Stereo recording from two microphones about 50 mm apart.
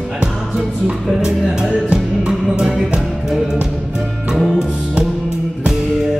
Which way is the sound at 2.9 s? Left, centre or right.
Centre.